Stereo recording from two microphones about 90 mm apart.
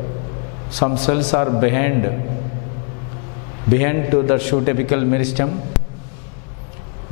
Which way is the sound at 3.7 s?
15° left (ahead or behind).